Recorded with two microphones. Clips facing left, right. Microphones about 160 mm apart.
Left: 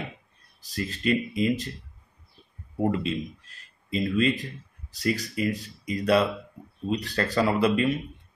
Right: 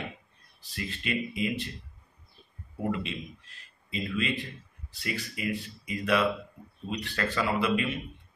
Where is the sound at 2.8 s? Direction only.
40° left (ahead or behind).